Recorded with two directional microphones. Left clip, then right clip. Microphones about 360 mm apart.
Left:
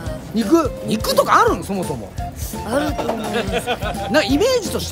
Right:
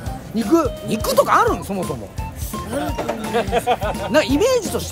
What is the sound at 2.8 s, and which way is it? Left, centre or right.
Speech, centre.